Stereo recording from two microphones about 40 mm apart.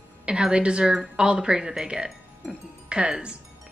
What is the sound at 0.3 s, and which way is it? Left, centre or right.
A woman's voice, right.